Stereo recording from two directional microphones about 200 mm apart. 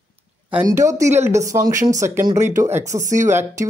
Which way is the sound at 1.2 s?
15° right (ahead or behind).